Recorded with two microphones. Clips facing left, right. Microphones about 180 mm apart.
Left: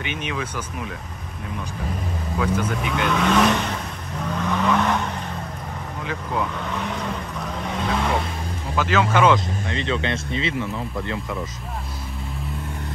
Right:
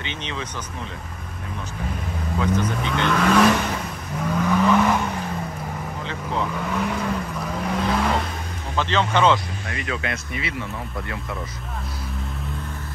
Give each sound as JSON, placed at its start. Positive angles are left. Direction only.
{"t": 0.2, "sound": "speech", "side_deg": 10}
{"t": 2.4, "sound": "speech", "side_deg": 10}
{"t": 4.3, "sound": "vehicle", "side_deg": -5}
{"t": 6.5, "sound": "vehicle", "side_deg": -5}
{"t": 8.7, "sound": "speech", "side_deg": 10}
{"t": 9.7, "sound": "speech", "side_deg": 25}